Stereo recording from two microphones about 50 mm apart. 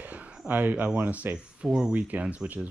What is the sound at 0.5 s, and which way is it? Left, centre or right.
Speech, right.